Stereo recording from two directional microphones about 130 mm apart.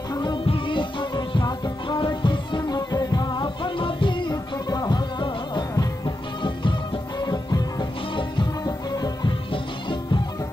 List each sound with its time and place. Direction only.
0.1 s music: 30° left (ahead or behind)